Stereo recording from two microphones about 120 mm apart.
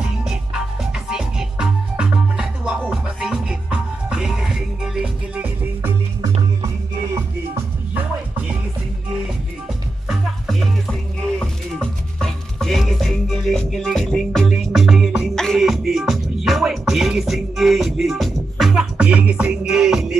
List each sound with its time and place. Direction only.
0.2 s music: 5° right (ahead or behind)
6.6 s music: 25° right (ahead or behind)
10.0 s music: centre (ahead or behind)